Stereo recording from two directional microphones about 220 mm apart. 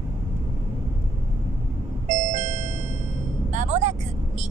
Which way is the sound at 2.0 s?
35° right (ahead or behind).